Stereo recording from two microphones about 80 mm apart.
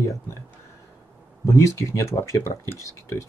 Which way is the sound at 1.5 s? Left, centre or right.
Left.